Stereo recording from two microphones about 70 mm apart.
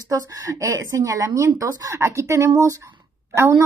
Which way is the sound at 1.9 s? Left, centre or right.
Right.